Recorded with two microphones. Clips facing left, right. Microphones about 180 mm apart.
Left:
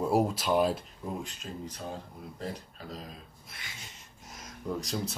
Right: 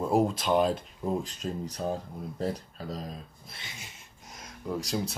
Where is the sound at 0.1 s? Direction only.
5° left (ahead or behind).